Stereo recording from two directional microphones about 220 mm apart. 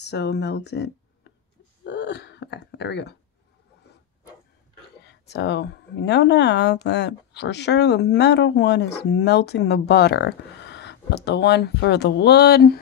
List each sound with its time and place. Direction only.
0.0 s speech: 50° left (ahead or behind)
5.0 s speech: 50° left (ahead or behind)